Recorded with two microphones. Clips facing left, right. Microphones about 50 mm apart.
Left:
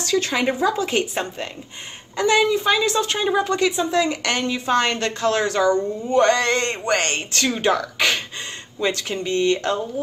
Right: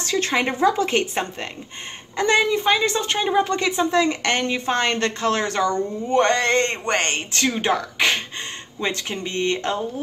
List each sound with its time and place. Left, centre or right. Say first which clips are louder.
0.2 s a woman's voice: right 1 dB; right
2.1 s a woman's voice: left 1 dB; right